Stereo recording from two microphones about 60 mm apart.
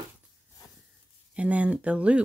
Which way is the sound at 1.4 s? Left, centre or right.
Right.